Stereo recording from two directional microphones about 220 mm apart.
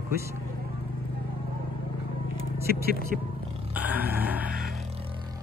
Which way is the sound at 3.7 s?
10° right (ahead or behind).